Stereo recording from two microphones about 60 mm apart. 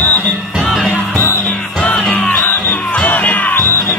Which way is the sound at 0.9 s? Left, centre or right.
Left.